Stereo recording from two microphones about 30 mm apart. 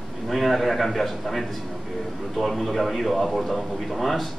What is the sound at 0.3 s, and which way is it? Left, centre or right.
Speech, centre.